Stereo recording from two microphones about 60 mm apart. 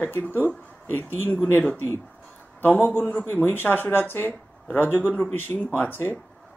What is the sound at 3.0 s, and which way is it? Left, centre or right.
Speech, left.